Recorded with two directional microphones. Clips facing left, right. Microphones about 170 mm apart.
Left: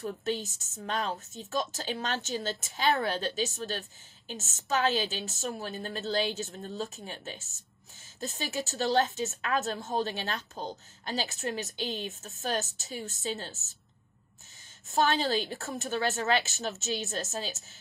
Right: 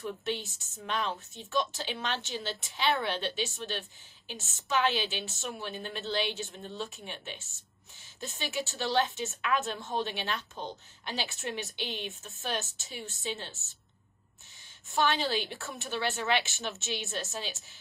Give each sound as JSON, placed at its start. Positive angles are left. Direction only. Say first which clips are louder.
{"t": 0.0, "sound": "a woman's voice", "louder": "left 2 dB", "side_deg": 40}
{"t": 14.9, "sound": "a woman's voice", "louder": "left 2 dB", "side_deg": 40}